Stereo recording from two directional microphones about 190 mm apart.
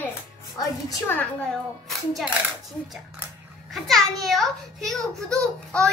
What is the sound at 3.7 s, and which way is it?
A child's voice, centre (ahead or behind).